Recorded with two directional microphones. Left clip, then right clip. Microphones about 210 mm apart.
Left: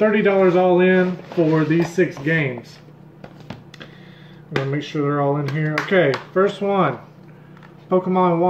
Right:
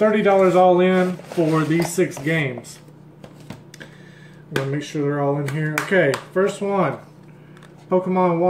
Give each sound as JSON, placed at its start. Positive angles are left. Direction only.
{"t": 0.0, "sound": "a man's voice", "side_deg": -5}
{"t": 1.5, "sound": "a man's voice", "side_deg": -15}
{"t": 4.6, "sound": "speech", "side_deg": 0}